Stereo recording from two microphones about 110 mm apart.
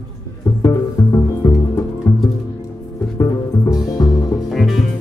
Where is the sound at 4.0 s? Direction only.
35° left (ahead or behind).